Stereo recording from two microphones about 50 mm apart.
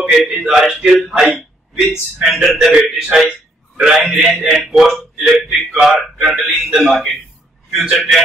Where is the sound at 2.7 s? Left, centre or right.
Centre.